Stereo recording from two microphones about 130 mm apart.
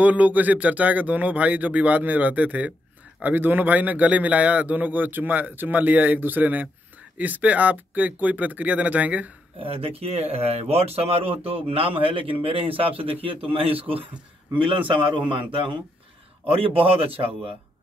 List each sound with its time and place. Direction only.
0.0 s a man's voice: 10° right (ahead or behind)
9.6 s a man's voice: 45° right (ahead or behind)
16.5 s speech: 45° right (ahead or behind)